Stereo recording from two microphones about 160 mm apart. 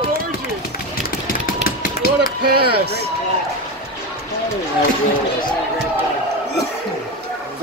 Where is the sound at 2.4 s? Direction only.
80° right.